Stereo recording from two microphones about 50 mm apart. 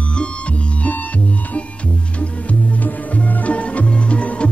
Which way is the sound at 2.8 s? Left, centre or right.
Left.